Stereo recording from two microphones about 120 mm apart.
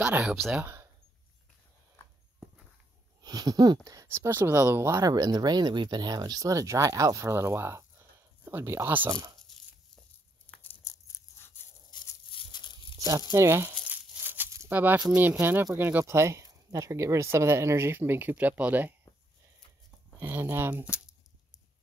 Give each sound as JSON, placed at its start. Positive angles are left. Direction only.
{"t": 0.0, "sound": "speech", "side_deg": -10}
{"t": 0.6, "sound": "speech", "side_deg": -25}
{"t": 3.2, "sound": "speech", "side_deg": -35}
{"t": 10.8, "sound": "a sound", "side_deg": 25}
{"t": 11.9, "sound": "a sound", "side_deg": 40}
{"t": 12.3, "sound": "crumpling", "side_deg": 45}
{"t": 13.3, "sound": "speech", "side_deg": -25}
{"t": 13.8, "sound": "tearing", "side_deg": -15}
{"t": 15.0, "sound": "speech", "side_deg": -10}
{"t": 20.2, "sound": "speech", "side_deg": -20}